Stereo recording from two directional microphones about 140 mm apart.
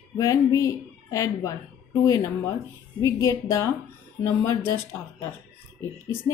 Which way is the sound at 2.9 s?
20° left (ahead or behind).